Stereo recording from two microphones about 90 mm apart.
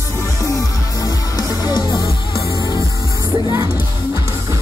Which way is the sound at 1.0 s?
45° left (ahead or behind).